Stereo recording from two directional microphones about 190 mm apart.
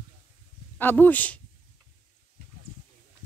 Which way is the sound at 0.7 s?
10° left (ahead or behind).